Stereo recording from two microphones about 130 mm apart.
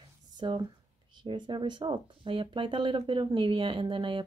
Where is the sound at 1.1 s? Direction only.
35° right (ahead or behind).